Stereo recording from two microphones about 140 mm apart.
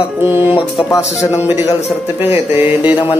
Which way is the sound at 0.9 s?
20° left (ahead or behind).